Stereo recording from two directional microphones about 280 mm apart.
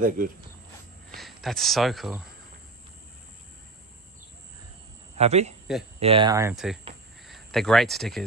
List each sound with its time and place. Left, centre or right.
0.2 s speech: right
1.1 s speech: centre
5.1 s speech: right; by 8.2 s centre